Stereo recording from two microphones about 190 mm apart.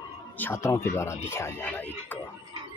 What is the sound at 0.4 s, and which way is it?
Speech, 15° left (ahead or behind).